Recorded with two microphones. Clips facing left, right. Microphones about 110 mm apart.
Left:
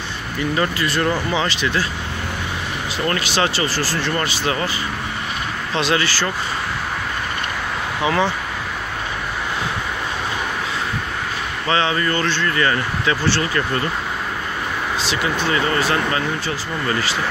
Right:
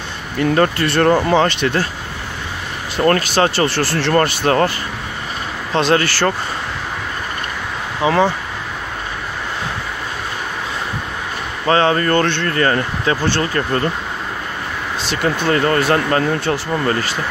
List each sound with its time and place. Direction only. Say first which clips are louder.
0.4 s speech: right 6 dB; 55° right (ahead or behind)
3.0 s speech: right 6 dB; 50° right (ahead or behind)
8.0 s speech: right 5 dB; 35° right (ahead or behind)
11.6 s speech: right 5 dB; 45° right (ahead or behind)
12.5 s speech: right 3 dB; 40° right (ahead or behind)
15.0 s speech: right 5 dB; 50° right (ahead or behind)